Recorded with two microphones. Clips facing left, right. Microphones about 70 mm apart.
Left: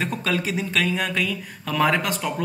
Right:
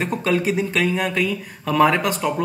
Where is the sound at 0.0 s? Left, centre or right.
Centre.